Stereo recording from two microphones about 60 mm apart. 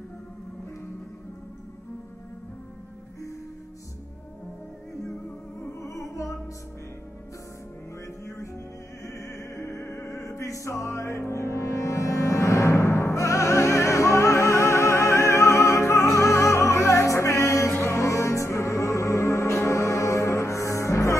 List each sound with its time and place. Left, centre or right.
5.6 s music: left
9.0 s music: left